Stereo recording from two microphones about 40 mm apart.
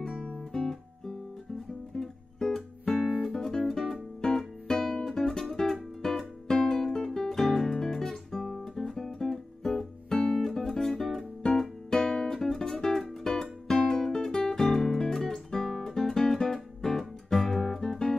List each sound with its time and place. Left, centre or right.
0.2 s guitar: centre
2.0 s music: centre
7.2 s guitar: centre
10.5 s music: centre